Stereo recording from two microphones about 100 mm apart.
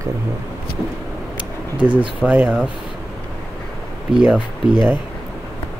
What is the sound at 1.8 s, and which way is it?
Speech, 10° right (ahead or behind).